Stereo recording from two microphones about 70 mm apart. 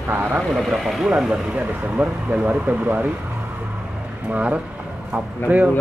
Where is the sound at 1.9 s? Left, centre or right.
Right.